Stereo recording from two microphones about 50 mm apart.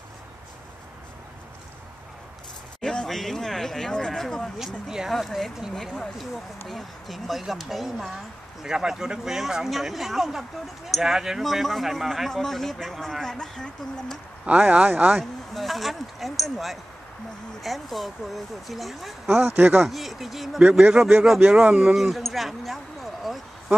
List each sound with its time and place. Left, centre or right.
2.8 s a sound: centre
3.1 s speech: centre
4.8 s speech: centre
5.1 s a man's voice: centre
14.4 s a man's voice: right
15.1 s a man's voice: centre
19.5 s speech: right
19.8 s a man's voice: centre
20.9 s a man's voice: right
21.9 s a man's voice: centre
23.3 s a sound: centre